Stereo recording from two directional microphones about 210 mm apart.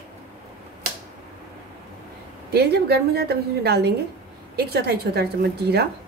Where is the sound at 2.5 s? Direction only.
50° right (ahead or behind).